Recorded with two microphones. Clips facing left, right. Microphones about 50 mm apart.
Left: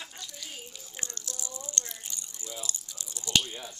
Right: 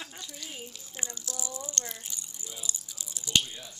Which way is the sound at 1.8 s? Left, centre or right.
Centre.